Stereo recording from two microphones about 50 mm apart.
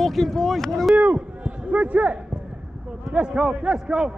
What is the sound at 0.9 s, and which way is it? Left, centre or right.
A man's voice, right.